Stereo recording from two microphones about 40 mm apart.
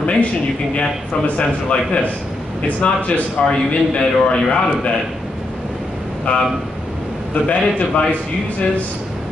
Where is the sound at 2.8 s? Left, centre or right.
Left.